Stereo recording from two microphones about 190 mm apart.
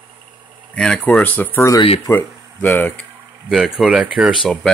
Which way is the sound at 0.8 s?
5° left (ahead or behind).